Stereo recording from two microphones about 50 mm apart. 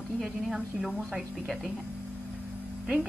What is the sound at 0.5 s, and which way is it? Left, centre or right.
Speech, centre.